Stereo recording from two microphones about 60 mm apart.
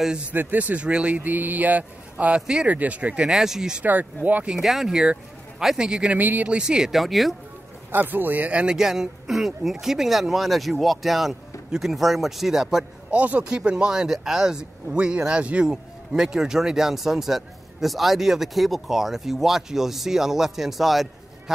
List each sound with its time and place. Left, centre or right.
0.3 s speech: right
2.4 s speech: centre
2.7 s speech: right
3.3 s speech: centre
3.8 s speech: right
4.6 s speech: centre
6.1 s speech: right
6.5 s speech: centre
7.9 s speech: right
8.7 s speech: centre
13.1 s speech: right; by 21.5 s centre